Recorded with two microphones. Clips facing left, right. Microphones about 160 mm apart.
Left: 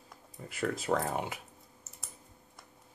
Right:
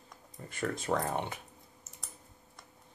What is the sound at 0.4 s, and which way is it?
Speech, 5° left (ahead or behind).